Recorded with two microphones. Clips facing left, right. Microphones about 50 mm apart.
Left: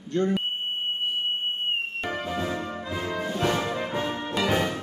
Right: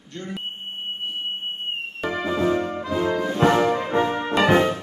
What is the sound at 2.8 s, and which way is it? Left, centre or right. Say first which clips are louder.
Music: right 7 dB; right.